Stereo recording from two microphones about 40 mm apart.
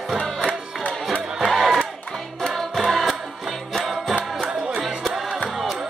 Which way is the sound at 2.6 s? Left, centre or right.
Centre.